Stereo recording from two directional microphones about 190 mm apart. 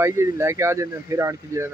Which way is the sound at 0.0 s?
15° right (ahead or behind).